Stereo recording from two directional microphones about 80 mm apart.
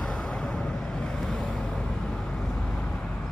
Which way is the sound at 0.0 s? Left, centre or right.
Centre.